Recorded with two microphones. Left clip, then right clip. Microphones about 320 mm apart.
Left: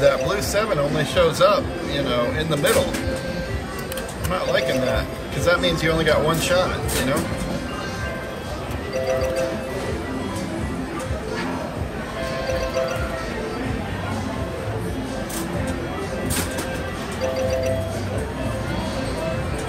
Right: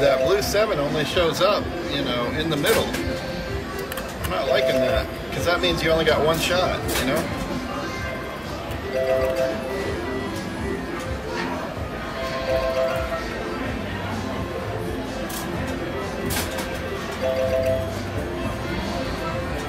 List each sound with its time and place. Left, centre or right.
0.0 s a man's voice: centre
4.3 s a man's voice: centre